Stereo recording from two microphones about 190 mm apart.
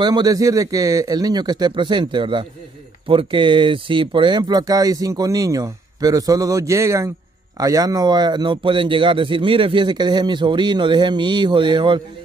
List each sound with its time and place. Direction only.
0.0 s speech: 20° right (ahead or behind)